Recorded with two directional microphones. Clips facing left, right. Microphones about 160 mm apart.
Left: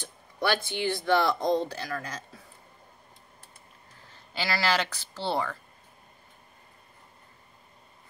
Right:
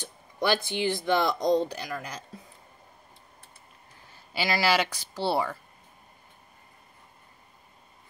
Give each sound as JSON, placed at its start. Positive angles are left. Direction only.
{"t": 0.4, "sound": "speech", "side_deg": -15}
{"t": 4.1, "sound": "speech", "side_deg": -10}